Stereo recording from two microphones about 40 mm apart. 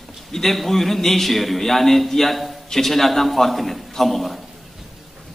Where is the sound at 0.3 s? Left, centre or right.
Centre.